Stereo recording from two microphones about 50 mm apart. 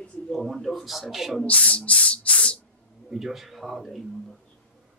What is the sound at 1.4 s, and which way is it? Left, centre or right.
Speech, left.